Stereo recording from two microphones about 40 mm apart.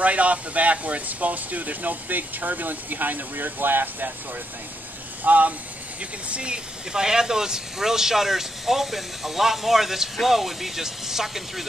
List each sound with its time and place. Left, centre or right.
0.0 s speech: right
5.2 s speech: right; by 11.6 s centre